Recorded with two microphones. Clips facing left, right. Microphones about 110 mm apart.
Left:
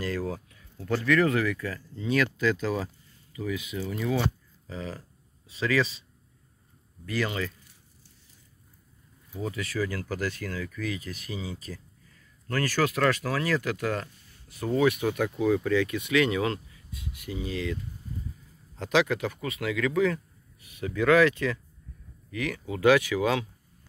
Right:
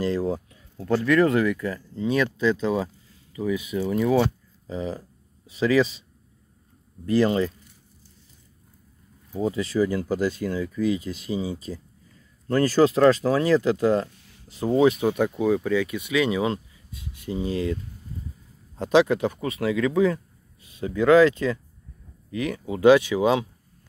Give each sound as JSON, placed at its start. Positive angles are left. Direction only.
{"t": 0.0, "sound": "speech", "side_deg": -25}
{"t": 7.1, "sound": "speech", "side_deg": -30}
{"t": 9.3, "sound": "speech", "side_deg": -30}
{"t": 18.8, "sound": "speech", "side_deg": -30}